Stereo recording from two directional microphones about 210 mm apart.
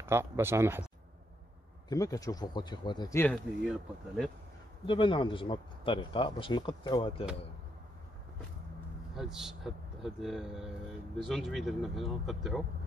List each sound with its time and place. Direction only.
0.0 s speech: 10° right (ahead or behind)
1.9 s a man's voice: 15° left (ahead or behind)
4.8 s speech: 25° left (ahead or behind)
9.1 s speech: centre (ahead or behind)